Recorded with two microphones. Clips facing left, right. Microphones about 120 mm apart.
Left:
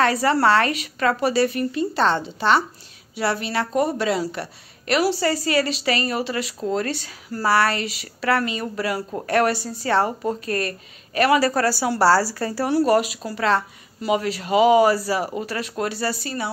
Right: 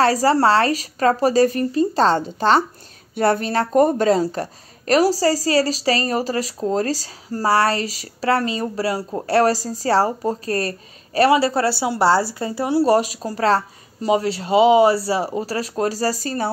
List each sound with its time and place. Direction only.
0.0 s speech: 35° right (ahead or behind); by 12.8 s 20° right (ahead or behind)
12.8 s speech: 35° right (ahead or behind)